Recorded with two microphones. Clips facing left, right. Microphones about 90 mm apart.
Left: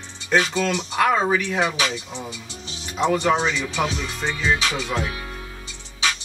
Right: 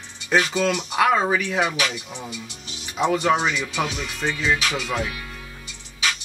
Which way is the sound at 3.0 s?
5° right (ahead or behind).